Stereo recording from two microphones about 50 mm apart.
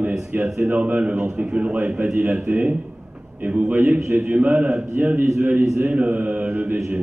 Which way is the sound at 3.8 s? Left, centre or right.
Right.